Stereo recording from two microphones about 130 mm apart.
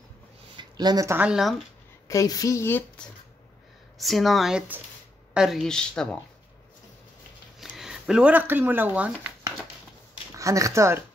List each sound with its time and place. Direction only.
0.6 s a sound: 30° right (ahead or behind)
1.1 s speech: 5° right (ahead or behind)
2.0 s a woman's voice: 25° left (ahead or behind)
4.0 s speech: centre (ahead or behind)
7.6 s speech: centre (ahead or behind)
10.3 s speech: 25° right (ahead or behind)